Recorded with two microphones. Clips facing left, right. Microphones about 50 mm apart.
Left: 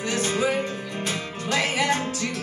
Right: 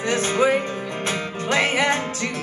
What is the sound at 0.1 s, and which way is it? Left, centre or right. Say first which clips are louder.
Music: right 5 dB; right.